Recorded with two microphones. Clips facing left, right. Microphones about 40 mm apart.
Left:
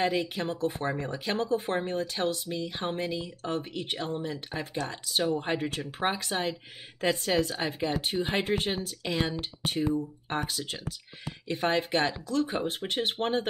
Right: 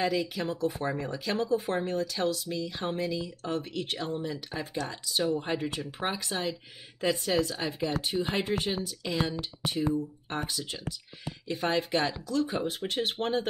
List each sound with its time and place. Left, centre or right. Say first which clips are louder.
0.0 s speech: left 1 dB; left
5.2 s speech: even; left
5.5 s speech: left 1 dB; left
10.3 s speech: left 2 dB; left